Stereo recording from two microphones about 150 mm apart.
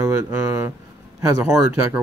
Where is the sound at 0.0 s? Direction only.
20° right (ahead or behind).